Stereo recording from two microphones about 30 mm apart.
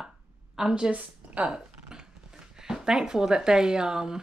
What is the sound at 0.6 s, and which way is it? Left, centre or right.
Speech, centre.